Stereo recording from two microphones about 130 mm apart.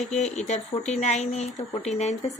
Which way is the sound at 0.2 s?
60° left (ahead or behind).